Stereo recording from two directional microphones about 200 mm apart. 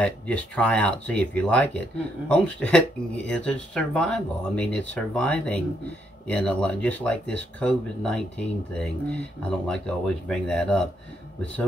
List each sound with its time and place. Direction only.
0.0 s speech: 5° left (ahead or behind)